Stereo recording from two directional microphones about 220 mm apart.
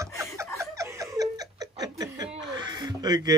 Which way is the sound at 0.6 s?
15° right (ahead or behind).